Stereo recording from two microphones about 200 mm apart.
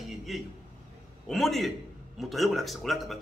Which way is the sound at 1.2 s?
Centre (ahead or behind).